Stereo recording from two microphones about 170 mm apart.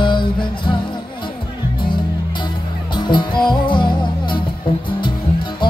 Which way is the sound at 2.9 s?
30° left (ahead or behind).